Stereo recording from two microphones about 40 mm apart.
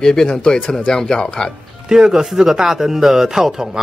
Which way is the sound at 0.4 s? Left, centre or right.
Left.